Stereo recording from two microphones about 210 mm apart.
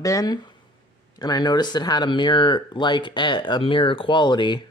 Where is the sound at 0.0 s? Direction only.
15° left (ahead or behind).